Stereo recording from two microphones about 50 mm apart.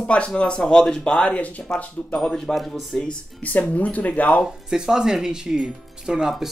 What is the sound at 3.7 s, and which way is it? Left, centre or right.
Speech, left.